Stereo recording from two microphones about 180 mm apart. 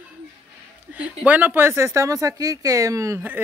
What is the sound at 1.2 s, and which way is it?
Speech, 10° right (ahead or behind).